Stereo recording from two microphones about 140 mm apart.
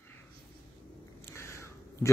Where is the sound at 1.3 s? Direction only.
20° left (ahead or behind).